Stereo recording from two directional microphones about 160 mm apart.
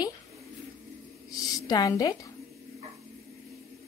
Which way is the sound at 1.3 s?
25° left (ahead or behind).